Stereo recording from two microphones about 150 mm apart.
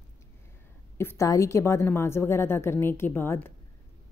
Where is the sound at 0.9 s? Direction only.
20° left (ahead or behind).